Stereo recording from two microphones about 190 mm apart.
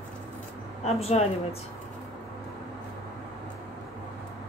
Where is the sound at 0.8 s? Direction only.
35° left (ahead or behind).